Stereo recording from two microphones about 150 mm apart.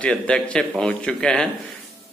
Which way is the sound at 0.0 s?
5° left (ahead or behind).